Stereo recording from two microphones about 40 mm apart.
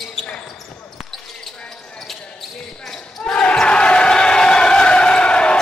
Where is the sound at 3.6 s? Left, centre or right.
Left.